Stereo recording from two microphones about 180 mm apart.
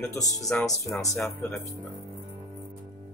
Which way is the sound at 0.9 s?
15° left (ahead or behind).